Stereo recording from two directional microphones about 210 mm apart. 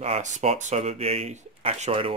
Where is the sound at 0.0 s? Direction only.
30° right (ahead or behind).